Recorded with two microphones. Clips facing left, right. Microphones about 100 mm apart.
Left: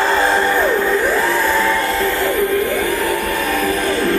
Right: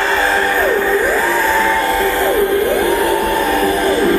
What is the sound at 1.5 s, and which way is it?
Music, 25° right (ahead or behind).